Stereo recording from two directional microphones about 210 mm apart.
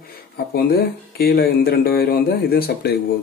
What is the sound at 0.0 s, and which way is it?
Speech, 45° left (ahead or behind).